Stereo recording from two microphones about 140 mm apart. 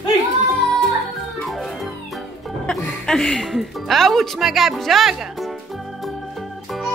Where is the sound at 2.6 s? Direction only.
5° left (ahead or behind).